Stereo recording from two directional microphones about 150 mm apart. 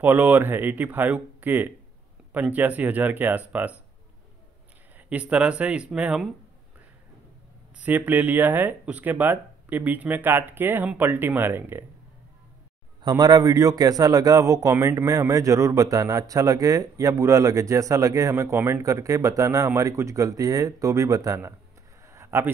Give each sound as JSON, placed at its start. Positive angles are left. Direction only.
{"t": 0.0, "sound": "speech", "side_deg": -10}
{"t": 4.9, "sound": "speech", "side_deg": -10}
{"t": 7.7, "sound": "speech", "side_deg": -10}
{"t": 13.0, "sound": "a man's voice", "side_deg": -25}
{"t": 22.0, "sound": "a sound", "side_deg": -20}